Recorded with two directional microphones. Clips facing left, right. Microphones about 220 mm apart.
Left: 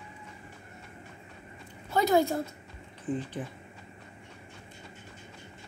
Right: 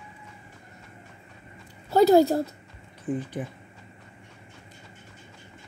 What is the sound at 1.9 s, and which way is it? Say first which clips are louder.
Speech: right 7 dB; 35° right (ahead or behind).